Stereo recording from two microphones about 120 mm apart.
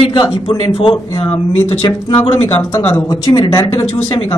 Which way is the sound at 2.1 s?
55° left (ahead or behind).